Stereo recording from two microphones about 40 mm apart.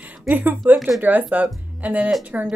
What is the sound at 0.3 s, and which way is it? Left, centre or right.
Speech, right.